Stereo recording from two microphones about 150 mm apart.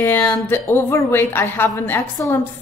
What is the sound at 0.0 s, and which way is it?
A woman's voice, 15° left (ahead or behind).